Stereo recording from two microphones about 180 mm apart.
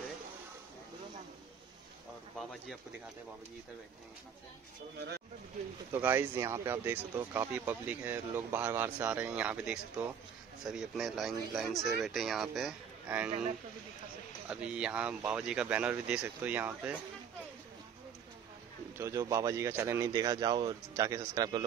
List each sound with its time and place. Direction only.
5.9 s speech: 15° right (ahead or behind)
14.5 s speech: 5° right (ahead or behind)
18.9 s speech: 15° right (ahead or behind)